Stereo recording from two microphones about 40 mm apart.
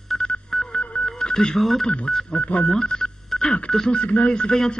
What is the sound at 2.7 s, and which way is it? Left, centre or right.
A man's voice, centre.